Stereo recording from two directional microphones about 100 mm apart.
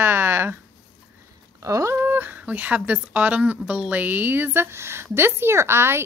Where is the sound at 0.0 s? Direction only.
25° right (ahead or behind).